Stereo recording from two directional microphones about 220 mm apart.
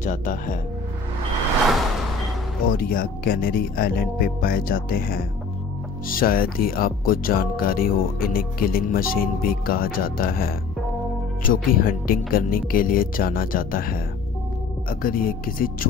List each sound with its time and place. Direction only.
0.0 s speech: 35° left (ahead or behind)
2.7 s speech: 40° left (ahead or behind)